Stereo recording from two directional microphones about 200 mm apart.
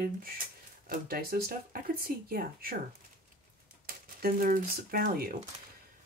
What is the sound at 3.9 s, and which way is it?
Speech, 45° right (ahead or behind).